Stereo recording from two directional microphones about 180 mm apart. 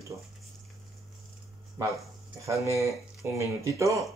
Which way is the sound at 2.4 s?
15° right (ahead or behind).